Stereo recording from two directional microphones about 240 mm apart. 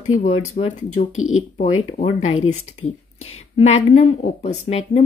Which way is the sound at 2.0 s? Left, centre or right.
Left.